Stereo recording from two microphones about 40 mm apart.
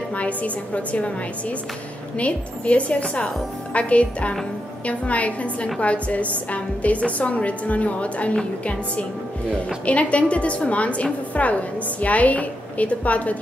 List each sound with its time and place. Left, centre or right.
0.1 s a woman's voice: left
2.1 s a woman's voice: left
9.8 s a woman's voice: left